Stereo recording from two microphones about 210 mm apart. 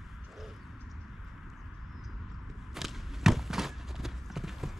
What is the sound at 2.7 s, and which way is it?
Clip-clop, centre (ahead or behind).